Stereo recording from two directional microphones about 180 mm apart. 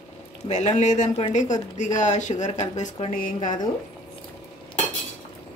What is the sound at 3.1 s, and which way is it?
Speech, 50° left (ahead or behind).